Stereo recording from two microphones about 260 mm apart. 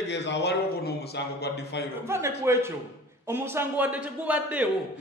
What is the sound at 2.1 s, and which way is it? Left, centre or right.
A man's voice, centre.